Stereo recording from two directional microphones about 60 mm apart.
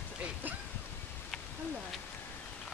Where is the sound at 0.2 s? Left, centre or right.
Right.